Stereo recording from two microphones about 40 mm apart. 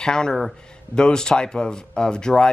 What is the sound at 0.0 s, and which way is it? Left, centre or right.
Speech, centre.